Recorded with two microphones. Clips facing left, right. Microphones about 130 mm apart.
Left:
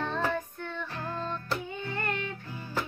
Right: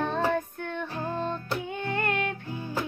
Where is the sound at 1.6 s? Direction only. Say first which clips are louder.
Right 5 dB; 70° right (ahead or behind).